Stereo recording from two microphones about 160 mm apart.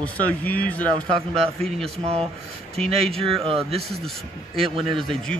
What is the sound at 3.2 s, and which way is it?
Speech, 35° right (ahead or behind).